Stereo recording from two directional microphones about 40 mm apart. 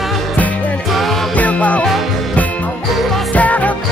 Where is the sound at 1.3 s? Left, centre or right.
Left.